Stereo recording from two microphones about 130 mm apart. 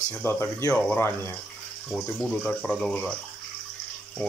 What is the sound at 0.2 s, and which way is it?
Speech, 20° left (ahead or behind).